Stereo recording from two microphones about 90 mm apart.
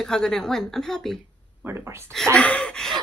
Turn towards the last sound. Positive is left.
turn(degrees=5)  # may be behind; listen again after turning